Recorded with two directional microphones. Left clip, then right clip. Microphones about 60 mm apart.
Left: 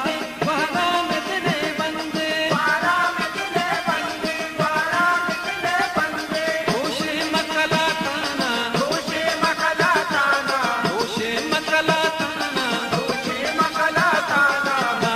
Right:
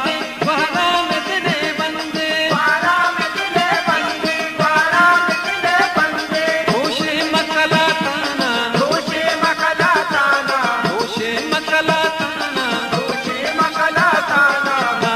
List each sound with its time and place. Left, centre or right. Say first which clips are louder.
0.5 s music: right 5 dB; right
2.5 s music: right 4 dB; right
7.3 s a sound: right 5 dB; right
8.7 s music: right 5 dB; right
13.6 s music: right 4 dB; right